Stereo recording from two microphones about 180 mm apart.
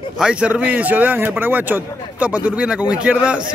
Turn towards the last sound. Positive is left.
turn(degrees=-5)  # may be behind; listen again after turning